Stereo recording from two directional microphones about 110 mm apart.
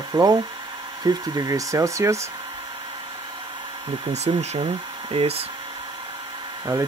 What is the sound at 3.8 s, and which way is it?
Speech, 55° right (ahead or behind).